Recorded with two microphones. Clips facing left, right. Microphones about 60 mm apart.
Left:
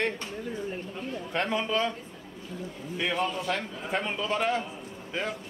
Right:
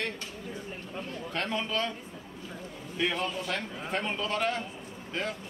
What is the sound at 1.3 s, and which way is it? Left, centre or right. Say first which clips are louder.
Speech: left 4 dB; centre.